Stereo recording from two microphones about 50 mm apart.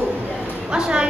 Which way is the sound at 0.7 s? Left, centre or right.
Centre.